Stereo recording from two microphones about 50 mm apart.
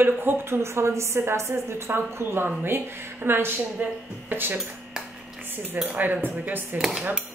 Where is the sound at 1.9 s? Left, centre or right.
Right.